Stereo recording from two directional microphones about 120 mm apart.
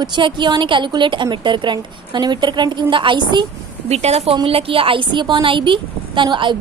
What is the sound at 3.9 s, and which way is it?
Speech, 65° right (ahead or behind).